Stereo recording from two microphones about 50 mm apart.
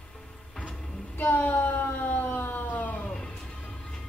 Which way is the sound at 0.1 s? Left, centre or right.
Centre.